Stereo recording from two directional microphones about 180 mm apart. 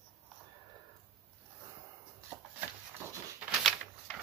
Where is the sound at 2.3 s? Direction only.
5° right (ahead or behind).